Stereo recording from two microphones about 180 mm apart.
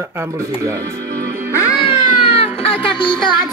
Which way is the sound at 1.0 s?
55° right (ahead or behind).